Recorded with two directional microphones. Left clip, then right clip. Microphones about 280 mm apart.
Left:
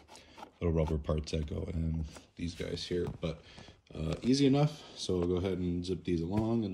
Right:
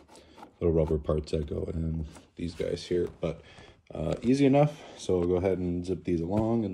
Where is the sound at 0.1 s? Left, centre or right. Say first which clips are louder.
Even; centre.